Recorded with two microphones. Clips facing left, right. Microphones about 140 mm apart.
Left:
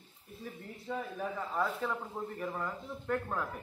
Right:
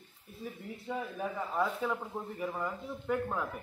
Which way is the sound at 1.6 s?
5° right (ahead or behind).